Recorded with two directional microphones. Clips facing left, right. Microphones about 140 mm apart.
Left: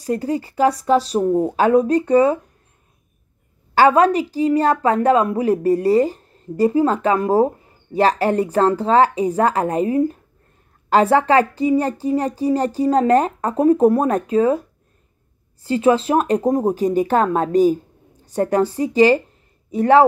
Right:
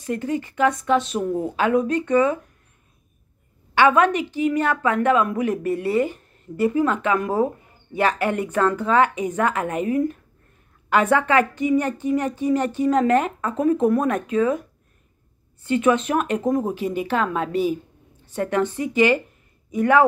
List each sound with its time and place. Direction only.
0.0 s a woman's voice: 35° left (ahead or behind)
3.7 s a woman's voice: 35° left (ahead or behind)
15.6 s a woman's voice: 30° left (ahead or behind)